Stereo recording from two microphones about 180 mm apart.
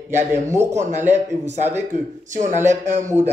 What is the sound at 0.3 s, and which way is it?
Speech, 15° right (ahead or behind).